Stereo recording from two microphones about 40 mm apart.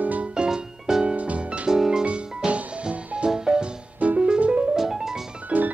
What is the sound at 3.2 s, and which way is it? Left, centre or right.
Music, centre.